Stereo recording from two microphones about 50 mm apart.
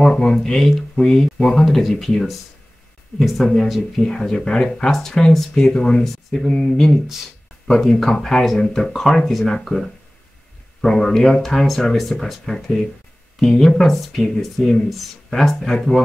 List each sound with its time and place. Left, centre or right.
0.0 s speech: centre
4.0 s speech: centre